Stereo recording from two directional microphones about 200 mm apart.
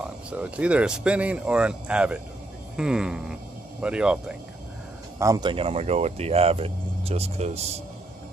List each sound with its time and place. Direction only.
0.0 s speech: 5° right (ahead or behind)
5.2 s speech: 20° right (ahead or behind)